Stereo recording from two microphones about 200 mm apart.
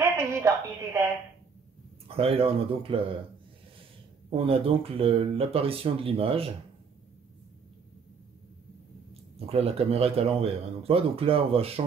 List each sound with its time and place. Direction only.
0.0 s a sound: 15° right (ahead or behind)
2.0 s speech: 30° right (ahead or behind)
4.5 s speech: 30° right (ahead or behind)
9.5 s speech: 30° right (ahead or behind)